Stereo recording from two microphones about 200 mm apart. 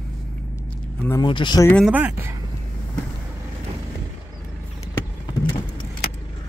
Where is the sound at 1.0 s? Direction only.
15° left (ahead or behind).